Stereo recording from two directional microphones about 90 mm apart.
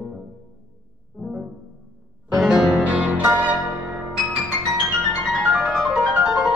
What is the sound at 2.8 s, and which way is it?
Music, 15° right (ahead or behind).